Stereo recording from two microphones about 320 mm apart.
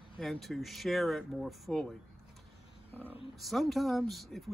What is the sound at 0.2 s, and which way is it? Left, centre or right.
Speech, centre.